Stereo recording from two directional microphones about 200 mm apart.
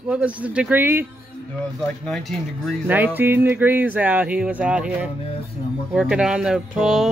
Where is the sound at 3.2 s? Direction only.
10° right (ahead or behind).